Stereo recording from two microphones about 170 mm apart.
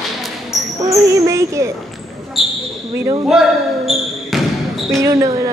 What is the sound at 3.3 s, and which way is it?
Basketball bounce, centre (ahead or behind).